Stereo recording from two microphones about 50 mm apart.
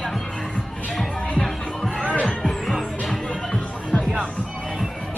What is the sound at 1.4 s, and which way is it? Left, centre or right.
Music, centre.